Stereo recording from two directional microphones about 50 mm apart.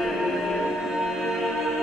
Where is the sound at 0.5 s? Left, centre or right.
Centre.